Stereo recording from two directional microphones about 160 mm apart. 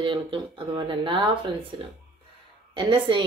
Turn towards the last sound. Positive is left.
turn(degrees=-30)  # may be behind; listen again after turning